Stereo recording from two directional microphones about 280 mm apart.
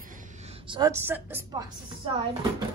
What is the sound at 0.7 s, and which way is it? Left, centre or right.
Speech, centre.